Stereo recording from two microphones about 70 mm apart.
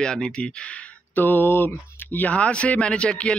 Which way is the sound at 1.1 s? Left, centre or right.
Left.